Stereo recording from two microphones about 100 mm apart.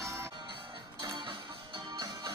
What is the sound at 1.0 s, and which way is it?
Music, 45° right (ahead or behind).